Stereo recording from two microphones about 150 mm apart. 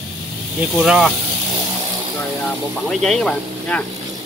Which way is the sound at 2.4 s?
Centre (ahead or behind).